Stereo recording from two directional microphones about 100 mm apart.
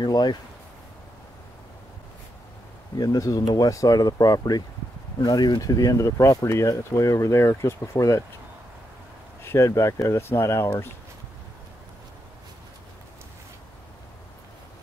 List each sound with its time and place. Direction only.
0.0 s speech: 45° left (ahead or behind)
3.0 s speech: 35° left (ahead or behind)
9.4 s speech: 25° left (ahead or behind)